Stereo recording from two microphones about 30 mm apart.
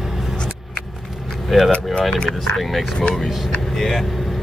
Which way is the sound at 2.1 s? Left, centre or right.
Left.